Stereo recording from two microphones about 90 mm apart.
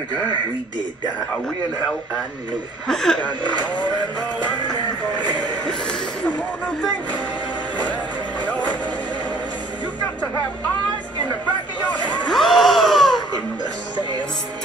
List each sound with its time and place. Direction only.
2.9 s speech: 5° left (ahead or behind)
5.7 s speech: 10° left (ahead or behind)
8.4 s music: 15° left (ahead or behind)
12.3 s a sound: centre (ahead or behind)